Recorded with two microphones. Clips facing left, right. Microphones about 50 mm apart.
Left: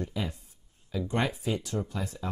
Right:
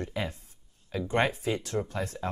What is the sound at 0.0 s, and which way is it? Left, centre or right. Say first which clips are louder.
Speech: right 1 dB; right.